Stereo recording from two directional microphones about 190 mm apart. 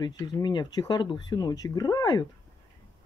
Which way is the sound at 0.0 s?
20° left (ahead or behind).